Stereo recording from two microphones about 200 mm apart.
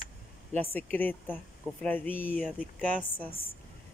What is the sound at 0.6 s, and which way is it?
Speech, 10° left (ahead or behind).